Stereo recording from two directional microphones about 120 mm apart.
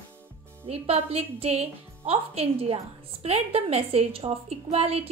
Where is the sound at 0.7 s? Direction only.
55° right (ahead or behind).